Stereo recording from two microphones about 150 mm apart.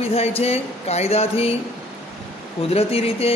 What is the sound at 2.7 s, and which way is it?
Speech, 40° left (ahead or behind).